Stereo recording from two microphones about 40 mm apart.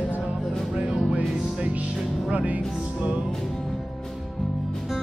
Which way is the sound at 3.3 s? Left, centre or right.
Centre.